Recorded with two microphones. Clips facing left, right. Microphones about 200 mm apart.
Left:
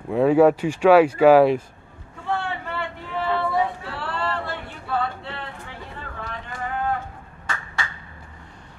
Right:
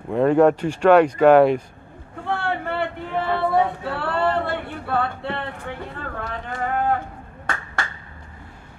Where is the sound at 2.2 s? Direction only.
55° right (ahead or behind).